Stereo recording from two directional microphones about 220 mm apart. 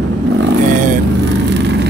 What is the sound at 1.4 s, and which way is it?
Vehicle, 50° right (ahead or behind).